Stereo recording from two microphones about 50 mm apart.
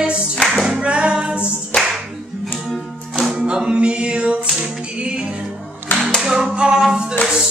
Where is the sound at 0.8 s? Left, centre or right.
Right.